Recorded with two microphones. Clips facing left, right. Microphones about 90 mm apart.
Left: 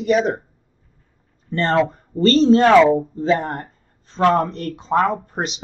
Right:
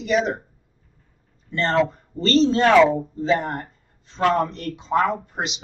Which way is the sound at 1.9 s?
45° left (ahead or behind).